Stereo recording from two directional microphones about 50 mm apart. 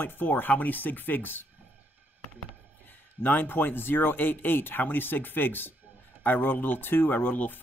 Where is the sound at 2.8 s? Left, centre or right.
Left.